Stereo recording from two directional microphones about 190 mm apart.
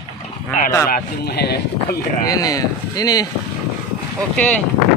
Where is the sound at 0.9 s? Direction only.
60° left (ahead or behind).